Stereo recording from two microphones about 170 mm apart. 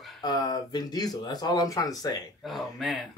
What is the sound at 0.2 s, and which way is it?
Speech, 25° left (ahead or behind).